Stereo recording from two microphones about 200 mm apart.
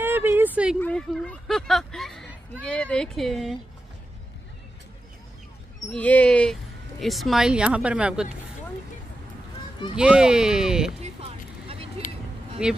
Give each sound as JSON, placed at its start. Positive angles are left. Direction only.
{"t": 0.0, "sound": "a sound", "side_deg": -10}
{"t": 0.7, "sound": "speech", "side_deg": 5}
{"t": 5.9, "sound": "speech", "side_deg": 5}
{"t": 9.9, "sound": "speech", "side_deg": -5}
{"t": 11.0, "sound": "a sound", "side_deg": -30}
{"t": 12.6, "sound": "speech", "side_deg": -5}